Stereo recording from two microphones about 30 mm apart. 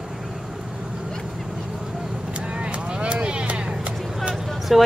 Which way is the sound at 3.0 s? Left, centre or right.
Right.